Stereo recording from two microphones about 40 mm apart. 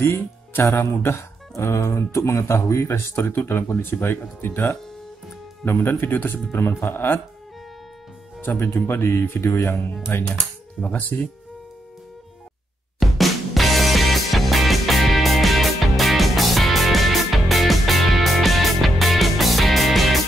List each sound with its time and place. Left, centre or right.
0.0 s speech: left
3.7 s speech: left
8.4 s speech: left
9.4 s speech: left
10.1 s speech: left
10.9 s speech: left
13.0 s music: centre